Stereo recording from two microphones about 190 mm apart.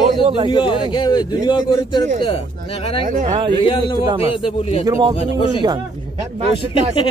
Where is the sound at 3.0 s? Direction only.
45° right (ahead or behind).